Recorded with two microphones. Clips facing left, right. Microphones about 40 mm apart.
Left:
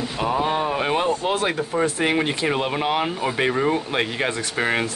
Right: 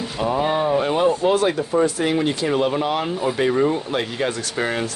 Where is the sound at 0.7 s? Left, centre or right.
Left.